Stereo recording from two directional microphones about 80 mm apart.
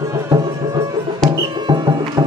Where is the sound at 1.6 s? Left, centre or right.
Right.